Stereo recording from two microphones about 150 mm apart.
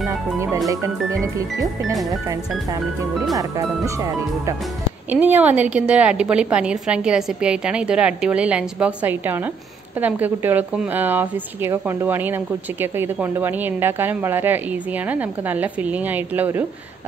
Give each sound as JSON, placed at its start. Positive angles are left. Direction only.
{"t": 1.2, "sound": "speech", "side_deg": -20}
{"t": 3.3, "sound": "speech", "side_deg": -20}
{"t": 5.1, "sound": "a woman's voice", "side_deg": -10}